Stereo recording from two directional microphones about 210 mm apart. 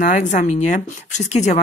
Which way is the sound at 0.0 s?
40° left (ahead or behind).